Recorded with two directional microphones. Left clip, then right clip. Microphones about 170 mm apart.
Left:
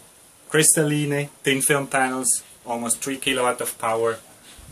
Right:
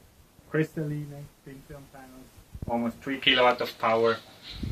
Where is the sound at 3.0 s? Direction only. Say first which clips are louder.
Right 3 dB; 40° left (ahead or behind).